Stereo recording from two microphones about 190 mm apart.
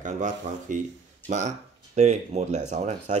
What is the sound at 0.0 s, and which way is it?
Speech, 40° right (ahead or behind).